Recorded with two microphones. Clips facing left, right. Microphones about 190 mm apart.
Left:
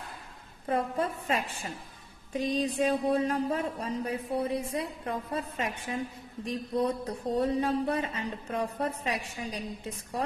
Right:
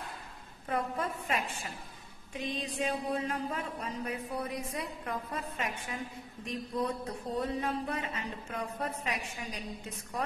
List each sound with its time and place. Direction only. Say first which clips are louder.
0.7 s a woman's voice: left 4 dB; 30° left (ahead or behind)